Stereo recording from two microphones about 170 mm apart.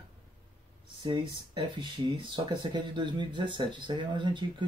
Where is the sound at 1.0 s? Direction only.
30° right (ahead or behind).